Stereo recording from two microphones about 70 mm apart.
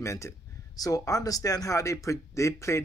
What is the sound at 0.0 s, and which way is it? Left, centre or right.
Speech, left.